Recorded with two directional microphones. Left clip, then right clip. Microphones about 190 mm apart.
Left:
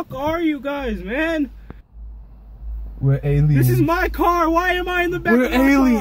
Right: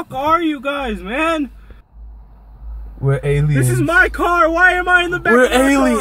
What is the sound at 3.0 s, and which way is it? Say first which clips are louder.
Speech: right 4 dB; 25° right (ahead or behind).